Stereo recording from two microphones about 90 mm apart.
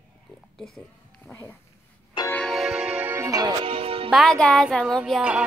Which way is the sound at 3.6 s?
90° right.